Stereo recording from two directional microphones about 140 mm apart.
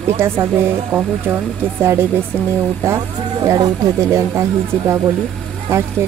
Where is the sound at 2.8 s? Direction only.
20° right (ahead or behind).